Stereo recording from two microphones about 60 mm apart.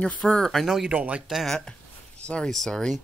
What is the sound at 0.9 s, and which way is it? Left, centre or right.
Speech, right.